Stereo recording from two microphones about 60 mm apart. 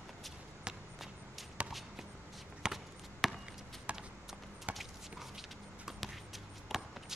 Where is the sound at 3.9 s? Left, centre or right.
Right.